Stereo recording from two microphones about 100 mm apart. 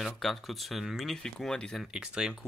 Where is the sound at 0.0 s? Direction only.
Centre (ahead or behind).